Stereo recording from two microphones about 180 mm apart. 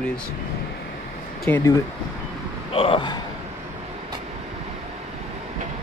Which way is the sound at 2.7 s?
30° left (ahead or behind).